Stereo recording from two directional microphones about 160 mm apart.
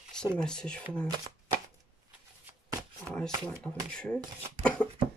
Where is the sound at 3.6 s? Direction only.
5° left (ahead or behind).